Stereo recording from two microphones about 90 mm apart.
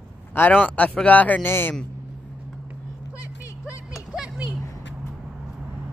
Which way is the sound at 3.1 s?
35° left (ahead or behind).